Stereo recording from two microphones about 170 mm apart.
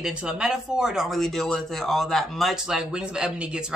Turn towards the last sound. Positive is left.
turn(degrees=-5)  # may be behind; listen again after turning